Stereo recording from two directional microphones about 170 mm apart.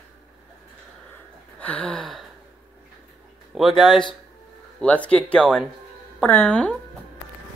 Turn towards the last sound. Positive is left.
turn(degrees=5)  # may be behind; listen again after turning